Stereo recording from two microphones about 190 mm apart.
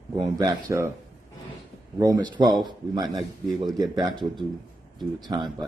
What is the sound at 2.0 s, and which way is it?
Speech, 20° right (ahead or behind).